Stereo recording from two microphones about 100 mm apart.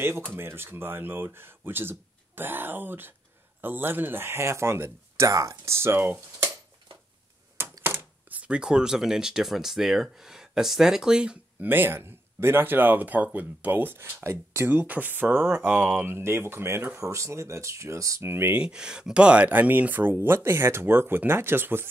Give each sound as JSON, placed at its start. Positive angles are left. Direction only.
{"t": 0.3, "sound": "speech", "side_deg": -25}
{"t": 7.5, "sound": "speech", "side_deg": -25}
{"t": 11.6, "sound": "speech", "side_deg": -20}
{"t": 18.6, "sound": "speech", "side_deg": -10}